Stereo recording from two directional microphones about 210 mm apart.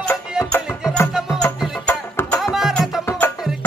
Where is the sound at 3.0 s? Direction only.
10° left (ahead or behind).